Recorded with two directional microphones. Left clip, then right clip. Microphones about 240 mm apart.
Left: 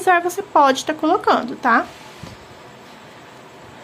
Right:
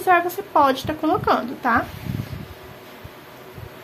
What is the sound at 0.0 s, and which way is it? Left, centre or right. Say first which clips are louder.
A woman's voice: left 2 dB; centre.